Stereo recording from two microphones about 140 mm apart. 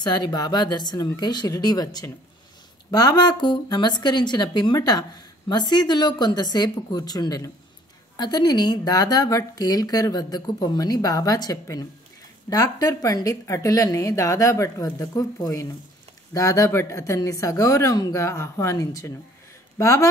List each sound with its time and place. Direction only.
0.0 s speech: 30° left (ahead or behind)